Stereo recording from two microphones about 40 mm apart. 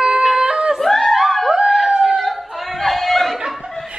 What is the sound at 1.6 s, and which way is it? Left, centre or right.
Dog, centre.